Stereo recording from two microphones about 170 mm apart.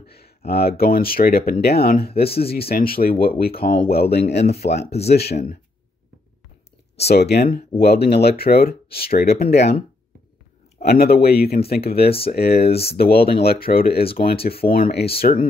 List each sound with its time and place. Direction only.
0.0 s a sound: 65° left (ahead or behind)
0.5 s speech: 70° left (ahead or behind)
2.2 s speech: 35° left (ahead or behind)
2.7 s speech: 60° left (ahead or behind); by 4.8 s 75° left (ahead or behind)
4.8 s speech: 40° left (ahead or behind)
5.1 s speech: 70° left (ahead or behind)
7.1 s speech: 70° left (ahead or behind)
10.8 s speech: 65° left (ahead or behind)
12.5 s speech: 35° left (ahead or behind)
12.9 s speech: 65° left (ahead or behind)